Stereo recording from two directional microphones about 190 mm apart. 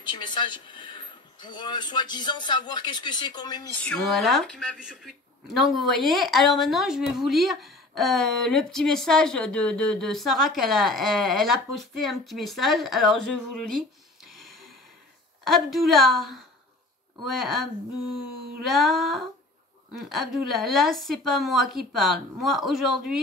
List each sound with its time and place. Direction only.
0.0 s speech: 25° left (ahead or behind)
3.7 s speech: 5° left (ahead or behind)
14.4 s gasp: centre (ahead or behind)
15.4 s speech: centre (ahead or behind)
18.7 s speech: centre (ahead or behind)